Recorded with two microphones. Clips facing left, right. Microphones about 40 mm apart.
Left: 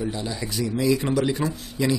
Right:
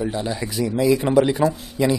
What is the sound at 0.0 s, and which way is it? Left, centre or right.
Speech, right.